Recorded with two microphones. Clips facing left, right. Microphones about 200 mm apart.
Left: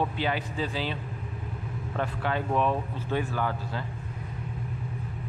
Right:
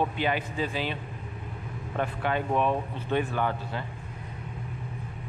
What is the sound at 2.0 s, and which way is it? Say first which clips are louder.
A man's voice: right 1 dB; 15° right (ahead or behind).